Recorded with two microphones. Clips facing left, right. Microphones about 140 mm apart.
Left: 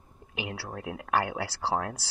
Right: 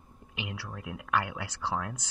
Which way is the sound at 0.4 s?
40° left (ahead or behind).